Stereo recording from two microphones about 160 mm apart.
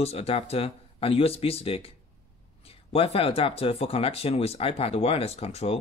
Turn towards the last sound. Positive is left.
turn(degrees=40)  # may be behind; listen again after turning